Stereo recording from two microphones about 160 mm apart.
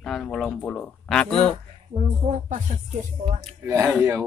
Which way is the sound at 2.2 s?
50° right (ahead or behind).